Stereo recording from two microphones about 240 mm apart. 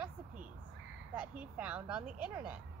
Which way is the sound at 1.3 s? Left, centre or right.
Centre.